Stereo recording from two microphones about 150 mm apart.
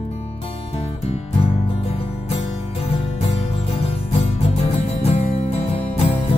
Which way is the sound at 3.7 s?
40° left (ahead or behind).